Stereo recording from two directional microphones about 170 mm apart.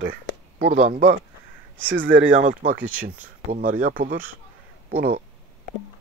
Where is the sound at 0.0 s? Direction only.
80° right.